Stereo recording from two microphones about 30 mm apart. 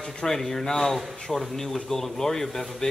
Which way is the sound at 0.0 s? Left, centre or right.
Centre.